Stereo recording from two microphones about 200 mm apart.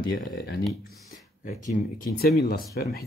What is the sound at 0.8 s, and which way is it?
Speech, 40° left (ahead or behind).